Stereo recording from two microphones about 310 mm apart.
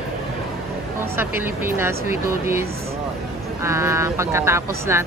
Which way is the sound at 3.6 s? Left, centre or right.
Centre.